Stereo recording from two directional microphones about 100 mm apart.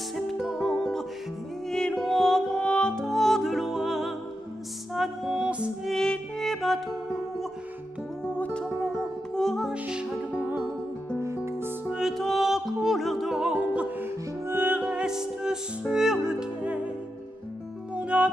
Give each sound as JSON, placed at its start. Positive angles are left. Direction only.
{"t": 0.1, "sound": "music", "side_deg": 0}
{"t": 5.9, "sound": "music", "side_deg": 5}
{"t": 8.3, "sound": "music", "side_deg": 10}
{"t": 11.9, "sound": "music", "side_deg": 0}
{"t": 17.9, "sound": "music", "side_deg": -15}